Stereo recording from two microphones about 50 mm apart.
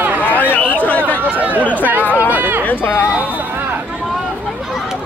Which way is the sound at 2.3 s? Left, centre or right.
Right.